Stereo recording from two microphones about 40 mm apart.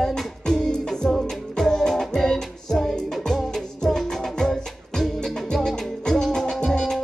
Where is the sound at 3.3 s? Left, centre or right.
Centre.